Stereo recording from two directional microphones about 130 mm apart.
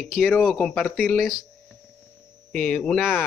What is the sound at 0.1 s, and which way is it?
Speech, centre (ahead or behind).